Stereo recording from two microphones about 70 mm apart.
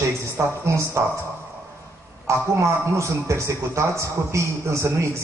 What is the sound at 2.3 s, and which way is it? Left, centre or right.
A man's voice, right.